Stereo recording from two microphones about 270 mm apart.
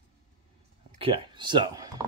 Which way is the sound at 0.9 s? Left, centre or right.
Right.